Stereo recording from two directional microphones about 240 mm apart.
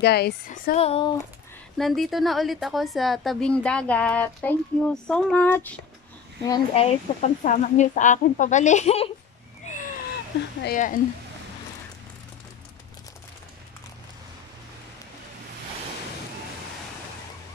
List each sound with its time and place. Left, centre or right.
0.0 s a woman's voice: left
0.7 s speech: left
1.8 s a woman's voice: centre
6.4 s speech: centre
9.7 s a sound: left
10.6 s a woman's voice: left